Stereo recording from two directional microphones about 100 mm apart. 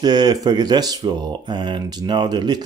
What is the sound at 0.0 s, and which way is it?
Speech, 45° right (ahead or behind).